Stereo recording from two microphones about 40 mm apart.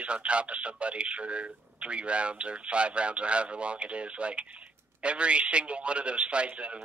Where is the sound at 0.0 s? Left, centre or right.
Right.